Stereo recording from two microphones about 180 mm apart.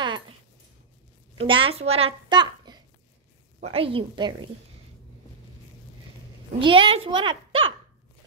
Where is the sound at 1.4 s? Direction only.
30° right (ahead or behind).